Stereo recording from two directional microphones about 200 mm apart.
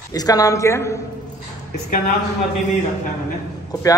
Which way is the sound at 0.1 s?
20° left (ahead or behind).